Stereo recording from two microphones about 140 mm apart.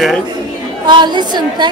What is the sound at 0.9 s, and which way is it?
Speech, 30° right (ahead or behind).